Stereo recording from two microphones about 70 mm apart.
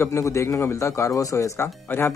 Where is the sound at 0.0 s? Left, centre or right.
Left.